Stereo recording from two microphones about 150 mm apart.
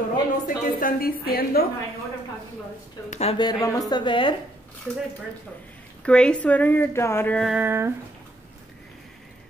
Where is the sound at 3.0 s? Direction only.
50° left (ahead or behind).